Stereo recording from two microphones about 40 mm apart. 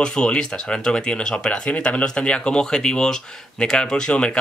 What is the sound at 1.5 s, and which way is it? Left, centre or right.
Speech, left.